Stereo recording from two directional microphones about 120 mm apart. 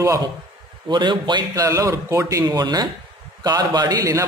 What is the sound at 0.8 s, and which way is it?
A man's voice, 40° right (ahead or behind).